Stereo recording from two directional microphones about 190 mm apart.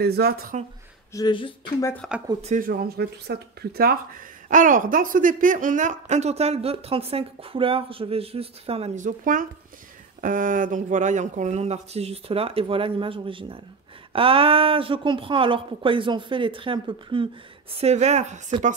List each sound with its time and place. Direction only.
0.0 s speech: 55° right (ahead or behind)
1.1 s speech: 25° left (ahead or behind)
2.4 s speech: 45° right (ahead or behind)